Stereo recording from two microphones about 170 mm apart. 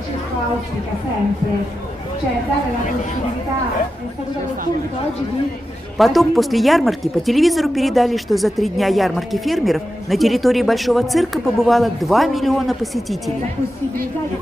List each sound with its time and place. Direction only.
5.9 s speech: centre (ahead or behind)